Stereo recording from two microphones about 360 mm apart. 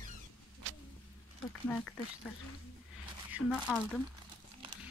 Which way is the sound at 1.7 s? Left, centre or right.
Centre.